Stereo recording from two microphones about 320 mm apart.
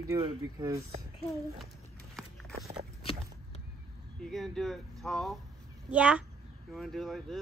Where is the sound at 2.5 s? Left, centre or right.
Centre.